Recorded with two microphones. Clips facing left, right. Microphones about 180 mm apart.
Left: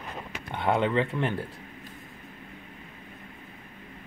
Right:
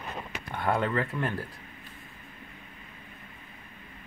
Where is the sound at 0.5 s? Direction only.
20° left (ahead or behind).